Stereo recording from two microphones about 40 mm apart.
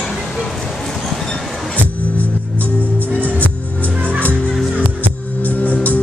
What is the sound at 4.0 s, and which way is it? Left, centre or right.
Music, right.